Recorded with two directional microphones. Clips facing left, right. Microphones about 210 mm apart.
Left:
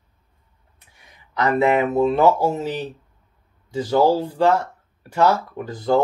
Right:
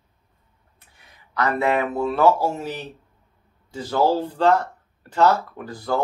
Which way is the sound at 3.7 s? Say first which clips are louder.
Left 3 dB; 15° left (ahead or behind).